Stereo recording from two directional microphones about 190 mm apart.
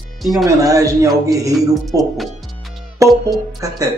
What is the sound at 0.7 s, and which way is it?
Speech, 15° right (ahead or behind).